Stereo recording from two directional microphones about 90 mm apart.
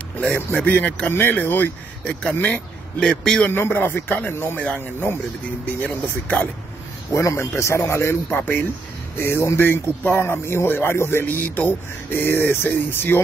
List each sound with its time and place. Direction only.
0.5 s speech: 20° left (ahead or behind)
3.0 s a man's voice: 10° left (ahead or behind)
3.5 s a man's voice: 25° left (ahead or behind)
6.2 s a man's voice: 15° left (ahead or behind)
7.1 s a man's voice: 35° left (ahead or behind)